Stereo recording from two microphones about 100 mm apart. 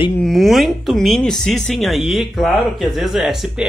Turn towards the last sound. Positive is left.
turn(degrees=-5)  # may be behind; listen again after turning